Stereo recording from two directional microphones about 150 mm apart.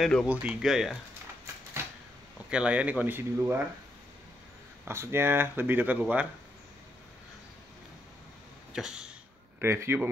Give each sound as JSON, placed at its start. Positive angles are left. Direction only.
{"t": 0.0, "sound": "speech", "side_deg": 0}
{"t": 2.5, "sound": "speech", "side_deg": -10}
{"t": 4.8, "sound": "speech", "side_deg": -15}
{"t": 8.7, "sound": "a sound", "side_deg": -5}
{"t": 9.6, "sound": "speech", "side_deg": -15}